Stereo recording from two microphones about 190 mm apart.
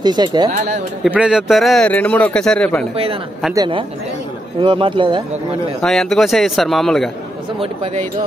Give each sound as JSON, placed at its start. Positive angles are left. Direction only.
{"t": 0.0, "sound": "speech", "side_deg": -20}
{"t": 1.0, "sound": "speech", "side_deg": -5}
{"t": 3.5, "sound": "speech", "side_deg": -25}
{"t": 5.8, "sound": "speech", "side_deg": 0}
{"t": 7.6, "sound": "speech", "side_deg": -30}